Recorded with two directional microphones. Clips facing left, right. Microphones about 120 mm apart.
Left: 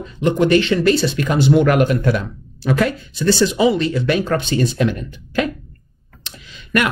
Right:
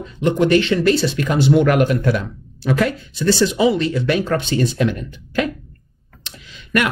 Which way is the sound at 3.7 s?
40° left (ahead or behind).